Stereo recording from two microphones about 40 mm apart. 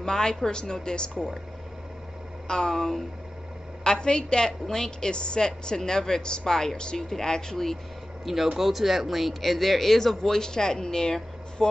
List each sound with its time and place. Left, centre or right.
0.0 s speech: centre
2.4 s a woman's voice: centre
8.5 s speech: centre